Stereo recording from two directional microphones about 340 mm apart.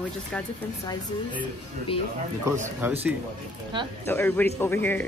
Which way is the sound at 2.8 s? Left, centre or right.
Centre.